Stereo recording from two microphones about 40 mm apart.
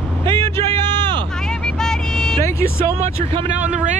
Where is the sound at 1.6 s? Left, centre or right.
Centre.